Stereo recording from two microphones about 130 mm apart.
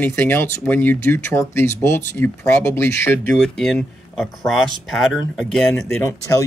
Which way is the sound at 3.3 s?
5° left (ahead or behind).